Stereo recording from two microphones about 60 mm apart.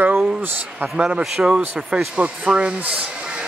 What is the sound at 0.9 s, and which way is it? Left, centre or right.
Speech, centre.